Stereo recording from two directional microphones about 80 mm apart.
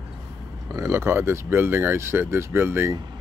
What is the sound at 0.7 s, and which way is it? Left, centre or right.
Speech, right.